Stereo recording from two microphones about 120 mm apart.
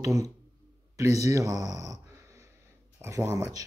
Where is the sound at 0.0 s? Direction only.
25° right (ahead or behind).